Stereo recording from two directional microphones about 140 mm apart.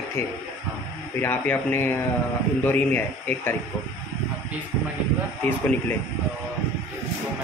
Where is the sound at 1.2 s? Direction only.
15° left (ahead or behind).